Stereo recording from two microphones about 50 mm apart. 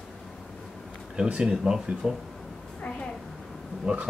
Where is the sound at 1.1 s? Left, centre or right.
Centre.